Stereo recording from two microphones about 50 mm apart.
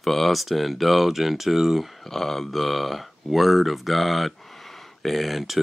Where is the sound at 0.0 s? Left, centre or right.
Centre.